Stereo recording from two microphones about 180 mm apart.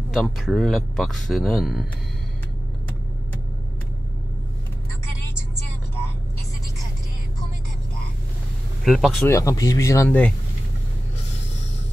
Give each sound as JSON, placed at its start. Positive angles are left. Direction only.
{"t": 0.1, "sound": "speech", "side_deg": 0}
{"t": 5.2, "sound": "vehicle", "side_deg": 15}
{"t": 8.8, "sound": "speech", "side_deg": 0}
{"t": 9.3, "sound": "speech", "side_deg": 20}